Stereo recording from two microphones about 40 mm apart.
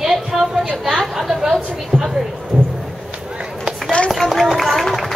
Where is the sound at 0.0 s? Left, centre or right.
Centre.